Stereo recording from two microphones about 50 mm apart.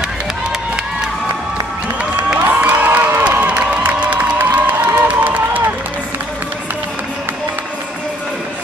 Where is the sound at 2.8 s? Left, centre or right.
Right.